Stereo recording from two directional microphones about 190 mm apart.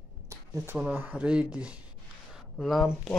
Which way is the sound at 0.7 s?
10° right (ahead or behind).